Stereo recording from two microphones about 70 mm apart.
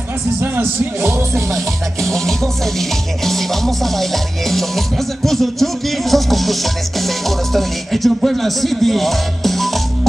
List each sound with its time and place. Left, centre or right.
0.4 s speech: right
2.0 s music: centre